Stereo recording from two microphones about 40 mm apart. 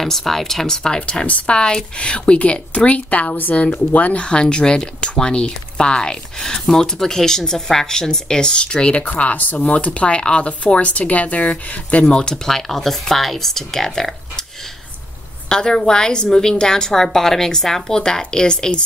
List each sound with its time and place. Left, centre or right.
0.0 s a woman's voice: centre
1.2 s speech: left
1.5 s speech: left
4.2 s a woman's voice: left
9.2 s speech: left
12.1 s speech: centre
12.4 s a woman's voice: centre
15.4 s a woman's voice: centre